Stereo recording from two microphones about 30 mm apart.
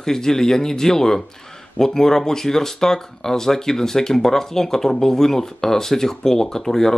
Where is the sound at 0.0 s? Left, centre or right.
Centre.